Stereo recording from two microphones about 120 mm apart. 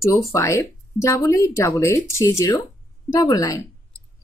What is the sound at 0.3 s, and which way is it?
Speech, 25° left (ahead or behind).